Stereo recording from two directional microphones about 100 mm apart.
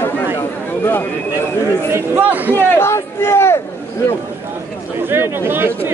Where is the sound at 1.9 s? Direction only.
20° right (ahead or behind).